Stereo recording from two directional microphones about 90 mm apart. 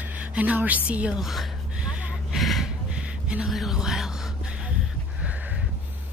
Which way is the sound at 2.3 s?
Centre (ahead or behind).